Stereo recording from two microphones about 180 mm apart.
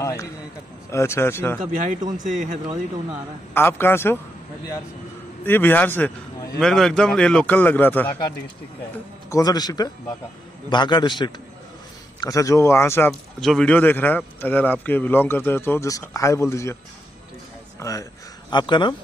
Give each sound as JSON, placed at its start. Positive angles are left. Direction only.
{"t": 0.0, "sound": "a sound", "side_deg": 15}
{"t": 0.8, "sound": "speech", "side_deg": 15}
{"t": 1.8, "sound": "speech", "side_deg": -45}
{"t": 3.5, "sound": "speech", "side_deg": 15}
{"t": 5.4, "sound": "a man's voice", "side_deg": 10}
{"t": 9.3, "sound": "speech", "side_deg": 20}
{"t": 13.4, "sound": "speech", "side_deg": 5}
{"t": 17.7, "sound": "speech", "side_deg": 20}